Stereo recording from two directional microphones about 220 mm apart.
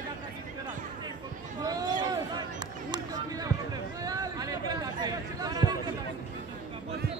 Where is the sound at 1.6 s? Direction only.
15° right (ahead or behind).